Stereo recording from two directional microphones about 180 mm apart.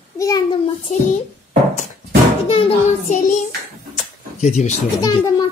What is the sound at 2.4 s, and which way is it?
Speech, 35° left (ahead or behind).